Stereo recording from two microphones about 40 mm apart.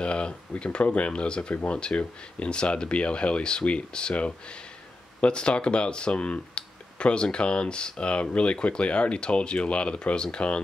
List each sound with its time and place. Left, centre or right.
0.0 s speech: left